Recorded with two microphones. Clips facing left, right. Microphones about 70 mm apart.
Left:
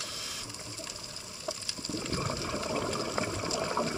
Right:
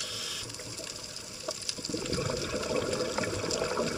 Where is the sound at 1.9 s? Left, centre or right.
Left.